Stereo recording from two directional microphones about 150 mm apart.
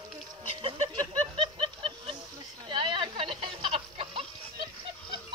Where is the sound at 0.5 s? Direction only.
40° right (ahead or behind).